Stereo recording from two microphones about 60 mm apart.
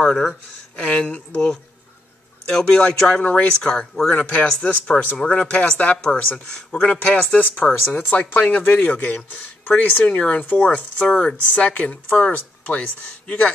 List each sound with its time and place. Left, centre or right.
0.0 s speech: centre
0.7 s speech: centre
5.3 s speech: centre
6.8 s speech: left